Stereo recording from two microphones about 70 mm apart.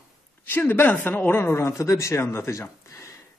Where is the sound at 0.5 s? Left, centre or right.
Left.